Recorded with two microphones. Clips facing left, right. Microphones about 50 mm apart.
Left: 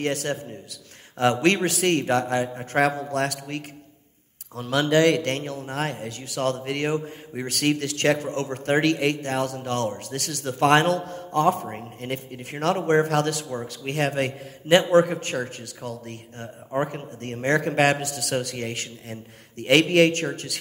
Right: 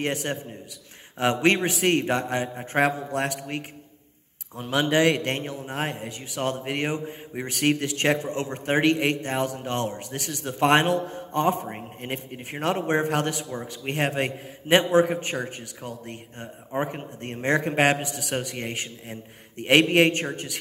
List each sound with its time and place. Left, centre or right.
0.0 s a man's voice: centre